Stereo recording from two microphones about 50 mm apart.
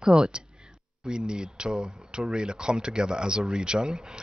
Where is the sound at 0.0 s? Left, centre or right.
Centre.